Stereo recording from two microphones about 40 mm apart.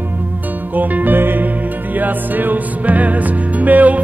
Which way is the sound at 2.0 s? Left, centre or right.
Right.